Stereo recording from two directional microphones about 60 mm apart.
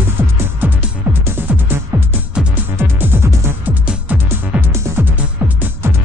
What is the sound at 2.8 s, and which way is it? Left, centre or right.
Music, right.